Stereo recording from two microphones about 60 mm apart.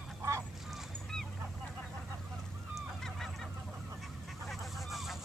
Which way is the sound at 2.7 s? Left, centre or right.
Centre.